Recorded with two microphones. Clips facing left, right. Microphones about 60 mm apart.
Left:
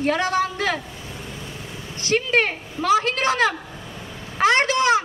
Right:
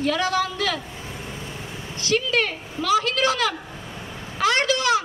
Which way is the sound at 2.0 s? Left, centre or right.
Left.